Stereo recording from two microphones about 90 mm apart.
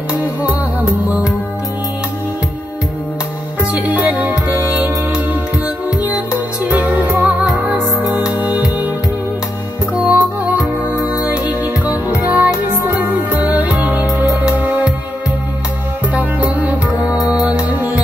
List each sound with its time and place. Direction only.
3.8 s music: 15° right (ahead or behind)
6.7 s music: 15° right (ahead or behind)
9.9 s music: 15° right (ahead or behind)
16.2 s music: 15° right (ahead or behind)